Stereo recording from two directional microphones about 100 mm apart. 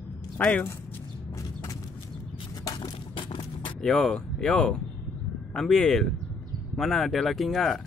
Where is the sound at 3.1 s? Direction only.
55° left (ahead or behind).